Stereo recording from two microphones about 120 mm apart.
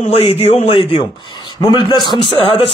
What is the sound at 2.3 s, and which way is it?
Speech, 50° left (ahead or behind).